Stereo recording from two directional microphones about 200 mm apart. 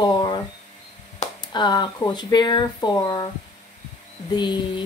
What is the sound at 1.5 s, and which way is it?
A woman's voice, 20° left (ahead or behind).